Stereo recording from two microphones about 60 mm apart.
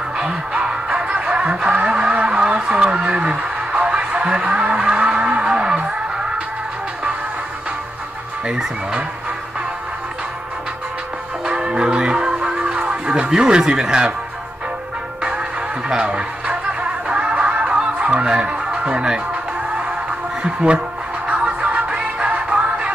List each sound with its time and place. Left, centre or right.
0.2 s music: centre
8.5 s speech: centre
11.4 s music: centre
15.9 s speech: centre
17.1 s music: centre
20.4 s speech: centre
21.3 s music: right